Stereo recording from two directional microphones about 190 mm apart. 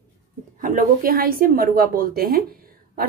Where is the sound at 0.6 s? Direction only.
50° right (ahead or behind).